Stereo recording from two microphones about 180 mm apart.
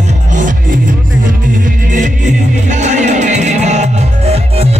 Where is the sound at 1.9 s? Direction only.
45° right (ahead or behind).